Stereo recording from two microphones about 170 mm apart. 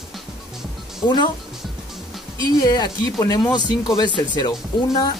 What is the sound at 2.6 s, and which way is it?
Speech, 25° left (ahead or behind).